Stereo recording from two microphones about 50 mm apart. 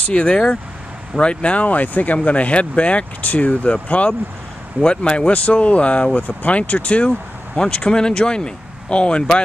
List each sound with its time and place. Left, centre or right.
0.1 s speech: left